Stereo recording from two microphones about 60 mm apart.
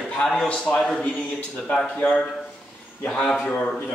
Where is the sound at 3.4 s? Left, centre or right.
Left.